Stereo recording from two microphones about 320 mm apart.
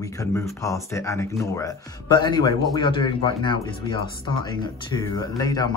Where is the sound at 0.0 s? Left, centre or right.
Centre.